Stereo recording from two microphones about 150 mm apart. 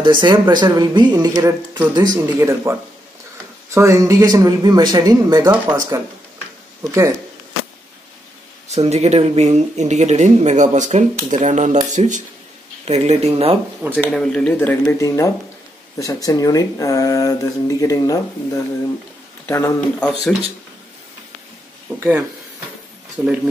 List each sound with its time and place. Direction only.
0.0 s speech: 30° right (ahead or behind)
8.6 s speech: 45° right (ahead or behind)
13.8 s speech: 15° right (ahead or behind)
14.1 s speech: 5° left (ahead or behind)
21.8 s speech: 10° right (ahead or behind)
23.2 s speech: 5° right (ahead or behind)